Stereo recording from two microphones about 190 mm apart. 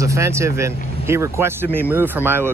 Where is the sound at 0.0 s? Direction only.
15° right (ahead or behind).